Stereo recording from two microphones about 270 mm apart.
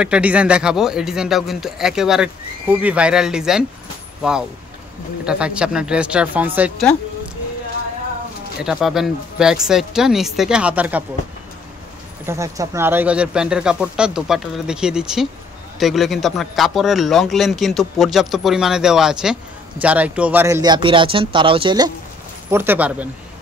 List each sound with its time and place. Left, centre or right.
0.0 s speech: centre
8.6 s speech: centre
12.3 s speech: centre